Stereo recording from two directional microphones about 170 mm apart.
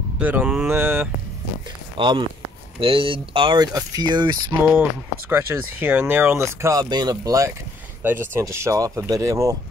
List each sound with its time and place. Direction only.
0.2 s speech: 10° right (ahead or behind)
2.0 s speech: 30° right (ahead or behind)
5.3 s speech: 10° right (ahead or behind)